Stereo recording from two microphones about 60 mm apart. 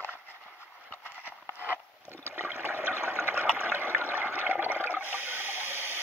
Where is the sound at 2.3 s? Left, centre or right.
Right.